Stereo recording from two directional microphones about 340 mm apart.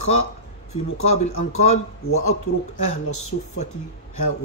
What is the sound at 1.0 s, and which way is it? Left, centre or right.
Speech, centre.